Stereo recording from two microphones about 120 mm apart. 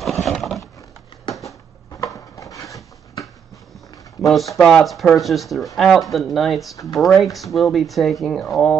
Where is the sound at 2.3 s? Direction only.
25° left (ahead or behind).